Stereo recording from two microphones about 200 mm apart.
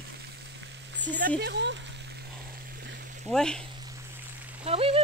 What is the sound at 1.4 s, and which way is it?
Speech, 60° right (ahead or behind).